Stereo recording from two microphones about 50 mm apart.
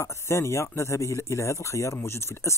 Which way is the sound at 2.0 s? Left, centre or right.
Left.